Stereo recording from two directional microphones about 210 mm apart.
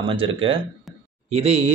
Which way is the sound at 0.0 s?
25° right (ahead or behind).